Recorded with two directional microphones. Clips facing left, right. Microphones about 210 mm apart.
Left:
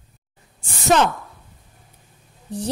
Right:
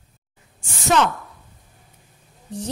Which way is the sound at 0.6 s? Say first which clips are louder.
Left 2 dB; 35° left (ahead or behind).